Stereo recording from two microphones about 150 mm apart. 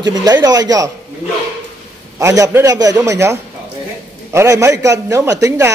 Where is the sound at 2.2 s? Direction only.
20° right (ahead or behind).